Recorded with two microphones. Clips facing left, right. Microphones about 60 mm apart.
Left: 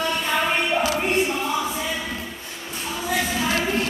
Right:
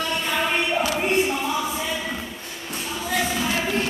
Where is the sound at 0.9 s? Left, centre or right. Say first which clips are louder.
Even; centre.